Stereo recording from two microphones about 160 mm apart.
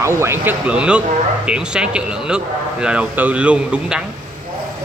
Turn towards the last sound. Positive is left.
turn(degrees=-5)  # may be behind; listen again after turning